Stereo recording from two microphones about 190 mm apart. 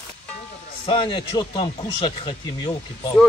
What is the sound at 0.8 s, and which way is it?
Speech, 25° left (ahead or behind).